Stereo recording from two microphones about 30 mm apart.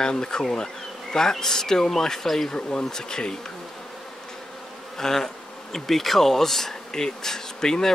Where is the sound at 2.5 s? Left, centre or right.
Left.